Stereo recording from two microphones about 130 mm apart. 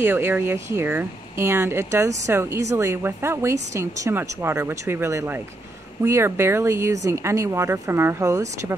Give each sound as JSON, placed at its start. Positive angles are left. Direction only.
{"t": 0.0, "sound": "speech", "side_deg": -15}